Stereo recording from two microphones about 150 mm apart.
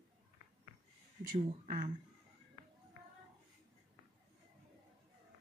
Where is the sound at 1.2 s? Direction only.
85° right.